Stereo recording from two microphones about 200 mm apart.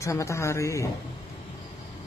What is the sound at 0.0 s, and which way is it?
Speech, 15° left (ahead or behind).